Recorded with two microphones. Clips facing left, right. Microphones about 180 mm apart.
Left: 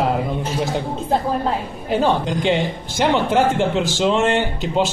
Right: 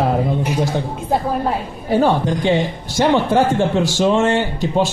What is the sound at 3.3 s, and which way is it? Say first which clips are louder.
Speech: right 2 dB; 15° left (ahead or behind).